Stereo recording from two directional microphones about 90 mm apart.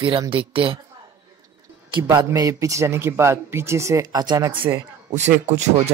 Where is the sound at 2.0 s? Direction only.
35° right (ahead or behind).